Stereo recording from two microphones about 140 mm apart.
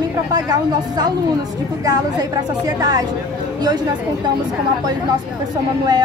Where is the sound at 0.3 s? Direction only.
30° right (ahead or behind).